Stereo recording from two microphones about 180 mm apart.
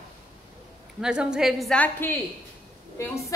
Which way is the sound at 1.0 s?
5° right (ahead or behind).